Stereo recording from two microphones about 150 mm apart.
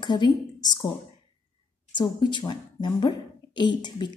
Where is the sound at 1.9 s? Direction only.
30° left (ahead or behind).